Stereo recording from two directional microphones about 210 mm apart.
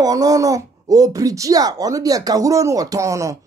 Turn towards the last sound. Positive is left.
turn(degrees=-15)  # may be behind; listen again after turning